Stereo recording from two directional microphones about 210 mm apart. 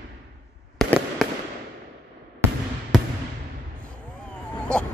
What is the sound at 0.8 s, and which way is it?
Fireworks, centre (ahead or behind).